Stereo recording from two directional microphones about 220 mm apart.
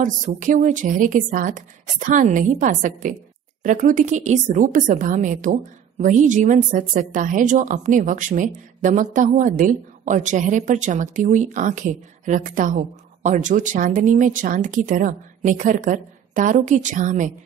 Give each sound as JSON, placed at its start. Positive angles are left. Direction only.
{"t": 0.0, "sound": "a woman's voice", "side_deg": -35}